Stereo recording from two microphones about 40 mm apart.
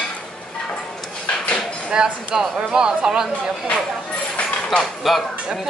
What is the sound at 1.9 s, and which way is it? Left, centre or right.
Speech, centre.